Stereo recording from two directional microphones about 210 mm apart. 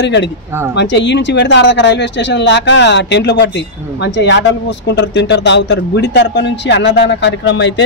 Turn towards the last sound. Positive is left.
turn(degrees=55)  # may be behind; listen again after turning